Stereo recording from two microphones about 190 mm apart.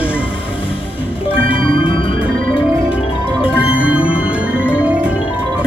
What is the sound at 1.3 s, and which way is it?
Music, 30° left (ahead or behind).